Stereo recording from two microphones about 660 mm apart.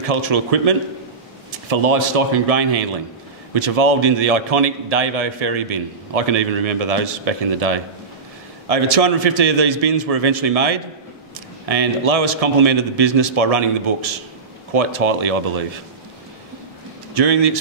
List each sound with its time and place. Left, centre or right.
0.0 s a man's voice: right
17.1 s a man's voice: right